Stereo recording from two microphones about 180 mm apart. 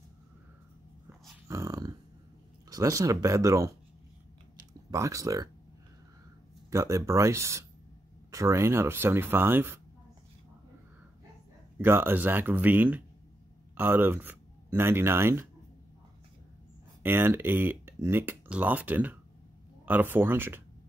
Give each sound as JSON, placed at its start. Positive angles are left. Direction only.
{"t": 1.5, "sound": "dog", "side_deg": -20}
{"t": 2.7, "sound": "speech", "side_deg": -20}
{"t": 4.9, "sound": "speech", "side_deg": -20}
{"t": 6.7, "sound": "speech", "side_deg": -15}
{"t": 11.8, "sound": "speech", "side_deg": -10}
{"t": 17.0, "sound": "speech", "side_deg": -10}